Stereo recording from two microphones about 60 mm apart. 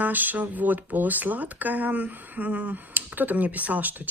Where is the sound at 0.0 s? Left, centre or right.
Right.